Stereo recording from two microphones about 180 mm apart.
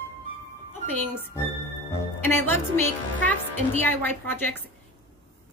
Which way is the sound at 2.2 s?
10° left (ahead or behind).